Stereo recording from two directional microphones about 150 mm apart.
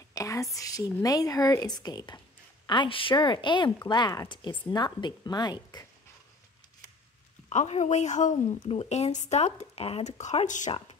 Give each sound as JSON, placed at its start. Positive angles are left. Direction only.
{"t": 0.1, "sound": "whispering", "side_deg": 20}
{"t": 1.0, "sound": "a woman's voice", "side_deg": 25}
{"t": 7.4, "sound": "a woman's voice", "side_deg": 45}